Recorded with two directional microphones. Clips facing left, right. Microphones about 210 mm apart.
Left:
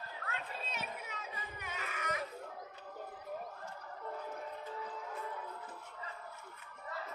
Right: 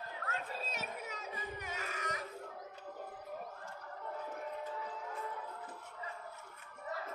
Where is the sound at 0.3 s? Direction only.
40° right (ahead or behind).